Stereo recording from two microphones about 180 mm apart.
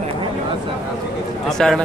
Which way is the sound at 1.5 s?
Centre (ahead or behind).